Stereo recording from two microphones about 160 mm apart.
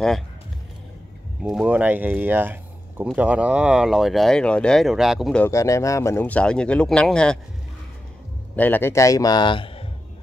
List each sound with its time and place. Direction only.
1.4 s speech: 5° right (ahead or behind)
5.4 s speech: 20° left (ahead or behind)
8.5 s a man's voice: 10° left (ahead or behind); by 9.8 s 30° left (ahead or behind)